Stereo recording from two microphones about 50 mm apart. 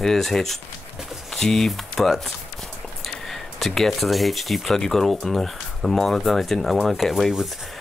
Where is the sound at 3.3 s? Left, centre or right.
Centre.